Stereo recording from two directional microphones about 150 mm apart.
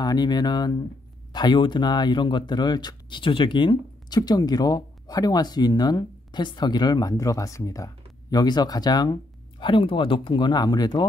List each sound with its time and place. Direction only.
0.0 s speech: 25° left (ahead or behind)